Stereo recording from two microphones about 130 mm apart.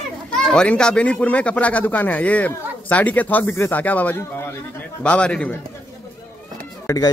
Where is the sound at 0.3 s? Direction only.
5° left (ahead or behind).